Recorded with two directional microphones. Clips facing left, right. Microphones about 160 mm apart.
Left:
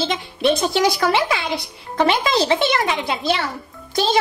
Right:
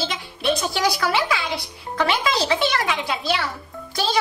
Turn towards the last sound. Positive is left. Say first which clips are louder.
# left 5 dB
turn(degrees=20)  # may be behind; listen again after turning